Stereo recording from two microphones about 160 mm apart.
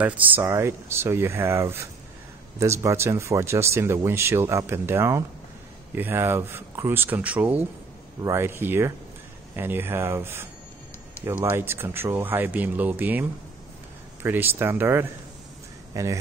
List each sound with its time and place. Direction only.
0.0 s speech: 15° right (ahead or behind)